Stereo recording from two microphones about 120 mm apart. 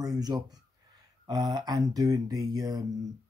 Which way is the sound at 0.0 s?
30° right (ahead or behind).